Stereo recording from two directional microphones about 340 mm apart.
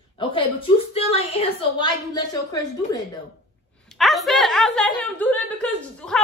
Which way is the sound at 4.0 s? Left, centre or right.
Centre.